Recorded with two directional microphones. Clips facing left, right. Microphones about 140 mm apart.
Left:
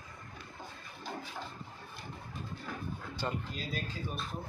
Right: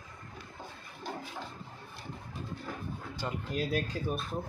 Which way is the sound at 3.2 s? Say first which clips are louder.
Left 1 dB; 5° right (ahead or behind).